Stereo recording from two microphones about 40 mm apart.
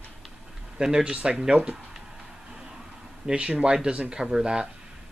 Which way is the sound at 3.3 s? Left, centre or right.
Right.